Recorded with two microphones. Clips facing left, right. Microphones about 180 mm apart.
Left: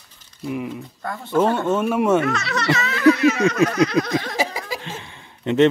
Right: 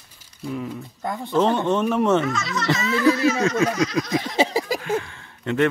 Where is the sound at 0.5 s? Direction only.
15° left (ahead or behind).